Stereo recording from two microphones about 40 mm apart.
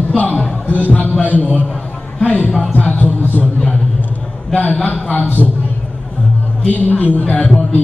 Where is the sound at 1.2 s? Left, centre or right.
Left.